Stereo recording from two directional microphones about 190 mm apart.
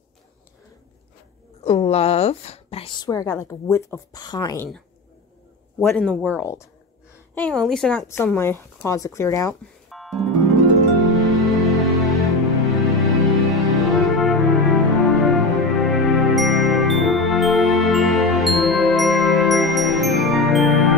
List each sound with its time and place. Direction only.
1.6 s a woman's voice: 35° left (ahead or behind)
5.8 s speech: 5° left (ahead or behind)
9.8 s music: centre (ahead or behind)